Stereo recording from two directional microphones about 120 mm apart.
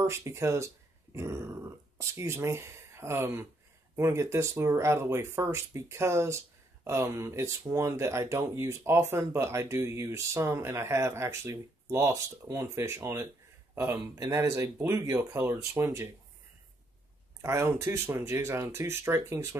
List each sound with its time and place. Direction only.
0.0 s speech: 25° right (ahead or behind)
17.4 s speech: 20° right (ahead or behind)